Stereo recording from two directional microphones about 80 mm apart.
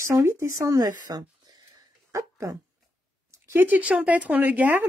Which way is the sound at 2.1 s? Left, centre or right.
Right.